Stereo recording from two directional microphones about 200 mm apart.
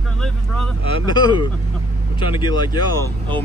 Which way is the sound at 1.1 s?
20° left (ahead or behind).